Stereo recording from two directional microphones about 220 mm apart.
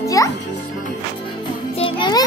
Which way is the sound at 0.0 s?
15° left (ahead or behind).